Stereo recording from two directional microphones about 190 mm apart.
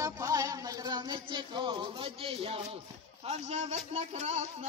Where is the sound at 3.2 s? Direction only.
35° right (ahead or behind).